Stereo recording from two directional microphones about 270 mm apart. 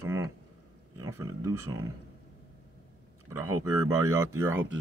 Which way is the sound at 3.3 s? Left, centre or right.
Centre.